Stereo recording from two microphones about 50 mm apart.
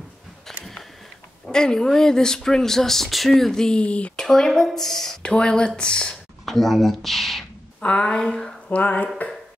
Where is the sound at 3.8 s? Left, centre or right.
Left.